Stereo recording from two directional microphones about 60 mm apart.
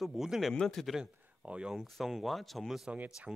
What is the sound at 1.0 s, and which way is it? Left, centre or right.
Speech, centre.